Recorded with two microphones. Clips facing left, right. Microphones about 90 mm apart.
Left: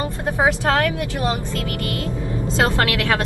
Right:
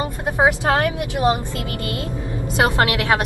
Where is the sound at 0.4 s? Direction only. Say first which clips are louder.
Right 1 dB; 20° right (ahead or behind).